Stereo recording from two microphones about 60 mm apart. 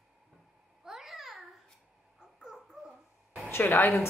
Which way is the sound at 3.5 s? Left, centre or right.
Left.